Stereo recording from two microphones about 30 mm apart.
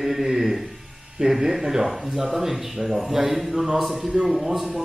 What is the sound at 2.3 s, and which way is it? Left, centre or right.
A man's voice, centre.